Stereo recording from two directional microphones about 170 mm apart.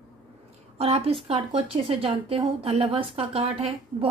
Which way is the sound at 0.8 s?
35° right (ahead or behind).